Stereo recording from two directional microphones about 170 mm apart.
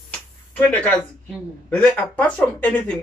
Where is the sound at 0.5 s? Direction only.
10° left (ahead or behind).